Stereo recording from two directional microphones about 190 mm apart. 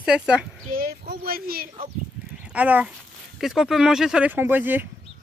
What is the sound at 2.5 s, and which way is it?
Speech, 5° right (ahead or behind).